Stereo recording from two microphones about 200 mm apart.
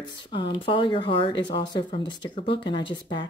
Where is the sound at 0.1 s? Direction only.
25° left (ahead or behind).